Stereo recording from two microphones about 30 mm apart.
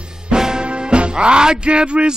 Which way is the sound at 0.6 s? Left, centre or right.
Right.